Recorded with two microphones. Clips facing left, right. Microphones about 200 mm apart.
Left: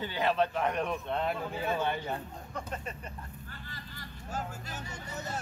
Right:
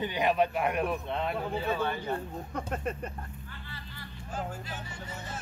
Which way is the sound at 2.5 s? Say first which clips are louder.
Right 5 dB; 55° right (ahead or behind).